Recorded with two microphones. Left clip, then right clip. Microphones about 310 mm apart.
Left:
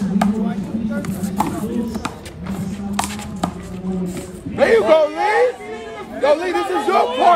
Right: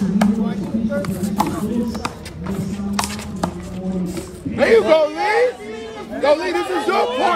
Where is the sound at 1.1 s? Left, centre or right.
Right.